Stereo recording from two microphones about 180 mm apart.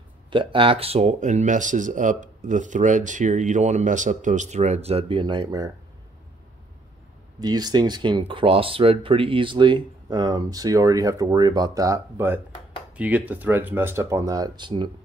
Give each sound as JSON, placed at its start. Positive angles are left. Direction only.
{"t": 0.3, "sound": "speech", "side_deg": -30}
{"t": 7.3, "sound": "speech", "side_deg": -20}